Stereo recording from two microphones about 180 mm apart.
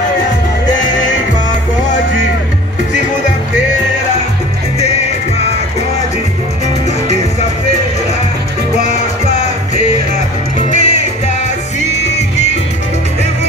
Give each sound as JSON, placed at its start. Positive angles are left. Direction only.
{"t": 10.7, "sound": "music", "side_deg": 40}